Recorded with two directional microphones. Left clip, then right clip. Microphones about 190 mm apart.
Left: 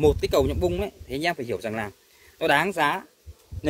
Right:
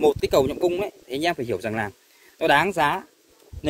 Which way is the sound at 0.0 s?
20° right (ahead or behind).